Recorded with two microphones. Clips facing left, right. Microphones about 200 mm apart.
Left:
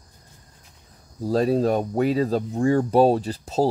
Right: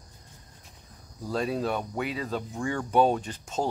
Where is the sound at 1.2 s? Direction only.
35° left (ahead or behind).